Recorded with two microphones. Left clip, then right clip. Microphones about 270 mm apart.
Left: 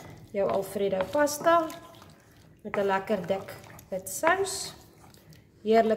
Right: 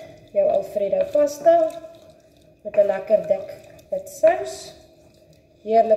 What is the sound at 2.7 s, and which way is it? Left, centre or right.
Speech, left.